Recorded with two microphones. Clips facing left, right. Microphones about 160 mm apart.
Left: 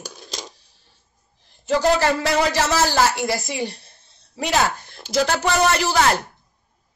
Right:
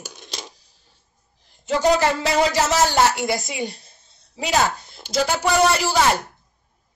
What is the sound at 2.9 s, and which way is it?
Speech, 20° right (ahead or behind).